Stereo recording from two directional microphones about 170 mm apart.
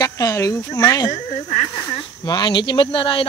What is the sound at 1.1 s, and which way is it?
Speech, 45° left (ahead or behind).